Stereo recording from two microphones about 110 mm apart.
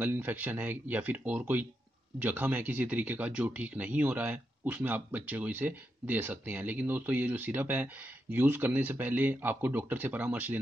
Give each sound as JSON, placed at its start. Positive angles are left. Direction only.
{"t": 0.0, "sound": "speech", "side_deg": -20}